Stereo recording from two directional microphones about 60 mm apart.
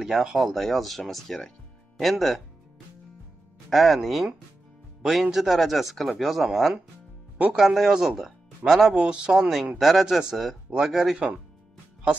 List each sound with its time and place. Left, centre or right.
0.0 s speech: centre
3.7 s speech: centre
8.9 s speech: centre
11.1 s speech: centre